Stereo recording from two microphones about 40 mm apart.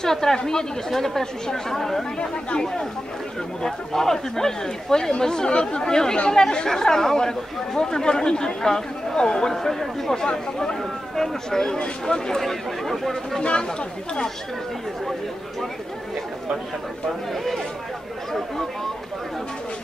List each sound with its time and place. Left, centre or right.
0.0 s speech: centre
2.1 s speech: left
2.6 s speech: centre
9.5 s speech: centre
12.4 s speech: centre
13.4 s speech: left
17.3 s speech: centre